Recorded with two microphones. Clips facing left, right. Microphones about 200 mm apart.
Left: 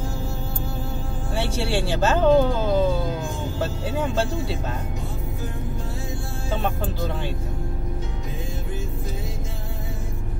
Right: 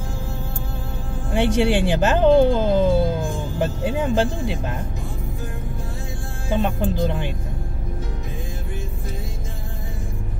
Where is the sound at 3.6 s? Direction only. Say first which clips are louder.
Right 5 dB; 20° right (ahead or behind).